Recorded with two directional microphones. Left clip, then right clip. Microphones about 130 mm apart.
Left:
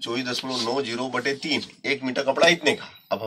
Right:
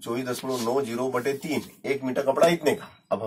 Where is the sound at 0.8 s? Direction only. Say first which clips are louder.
Even; 15° right (ahead or behind).